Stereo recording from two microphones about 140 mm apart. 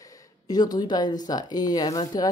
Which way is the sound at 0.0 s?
30° left (ahead or behind).